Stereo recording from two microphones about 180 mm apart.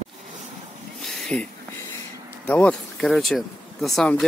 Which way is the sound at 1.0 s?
Centre (ahead or behind).